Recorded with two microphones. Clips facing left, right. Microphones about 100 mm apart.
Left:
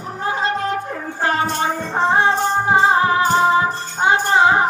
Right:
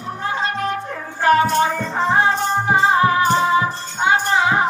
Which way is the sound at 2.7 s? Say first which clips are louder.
Even; 25° left (ahead or behind).